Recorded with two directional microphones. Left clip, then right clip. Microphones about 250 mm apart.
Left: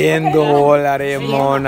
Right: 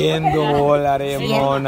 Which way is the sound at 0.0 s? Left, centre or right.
Centre.